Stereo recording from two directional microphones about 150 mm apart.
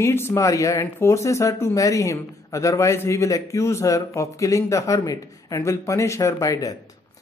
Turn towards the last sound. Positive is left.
turn(degrees=25)  # may be behind; listen again after turning